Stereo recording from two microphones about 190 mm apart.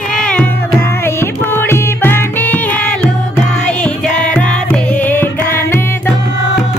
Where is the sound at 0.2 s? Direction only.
5° left (ahead or behind).